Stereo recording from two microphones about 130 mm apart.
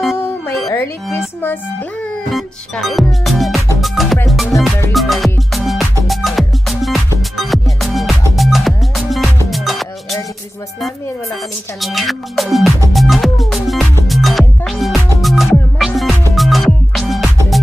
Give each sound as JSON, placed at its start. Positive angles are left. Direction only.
{"t": 0.2, "sound": "music", "side_deg": 20}
{"t": 1.1, "sound": "speech", "side_deg": 15}
{"t": 2.3, "sound": "speech", "side_deg": 0}
{"t": 3.8, "sound": "music", "side_deg": 0}
{"t": 11.8, "sound": "music", "side_deg": 0}